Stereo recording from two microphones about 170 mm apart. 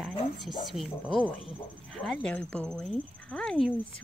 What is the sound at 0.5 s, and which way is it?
Speech, centre (ahead or behind).